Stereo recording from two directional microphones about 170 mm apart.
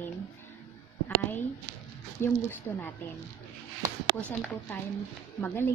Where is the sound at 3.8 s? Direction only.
20° right (ahead or behind).